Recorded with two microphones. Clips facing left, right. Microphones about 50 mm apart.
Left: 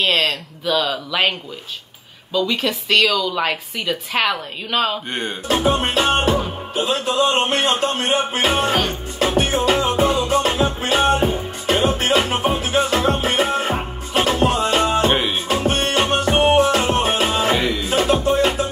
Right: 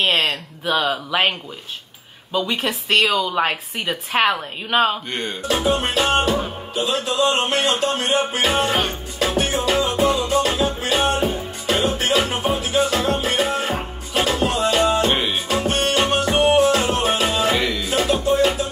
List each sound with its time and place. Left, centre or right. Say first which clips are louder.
0.0 s speech: left 1 dB; right
2.3 s a woman's voice: left 2 dB; right
5.1 s speech: left 1 dB; left
5.5 s music: left 2 dB; left
15.1 s music: left 1 dB; centre
15.4 s music: left 1 dB; left